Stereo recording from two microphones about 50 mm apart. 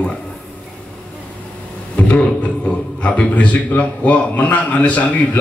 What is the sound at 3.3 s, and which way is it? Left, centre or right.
A man's voice, left.